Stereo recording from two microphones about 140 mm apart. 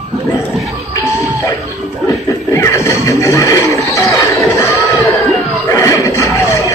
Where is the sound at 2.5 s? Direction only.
20° left (ahead or behind).